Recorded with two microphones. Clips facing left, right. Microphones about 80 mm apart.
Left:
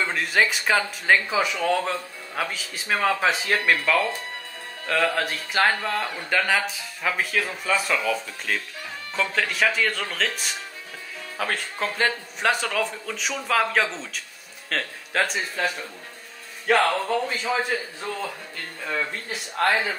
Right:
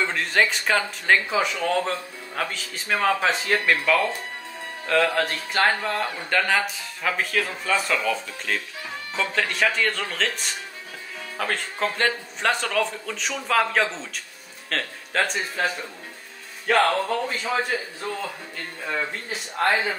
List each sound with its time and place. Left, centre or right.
0.1 s speech: centre
19.6 s speech: centre